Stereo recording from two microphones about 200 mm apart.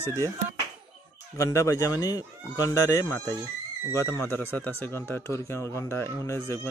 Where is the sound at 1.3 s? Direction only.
15° left (ahead or behind).